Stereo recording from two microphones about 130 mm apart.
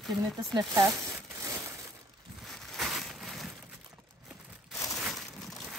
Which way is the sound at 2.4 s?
Centre (ahead or behind).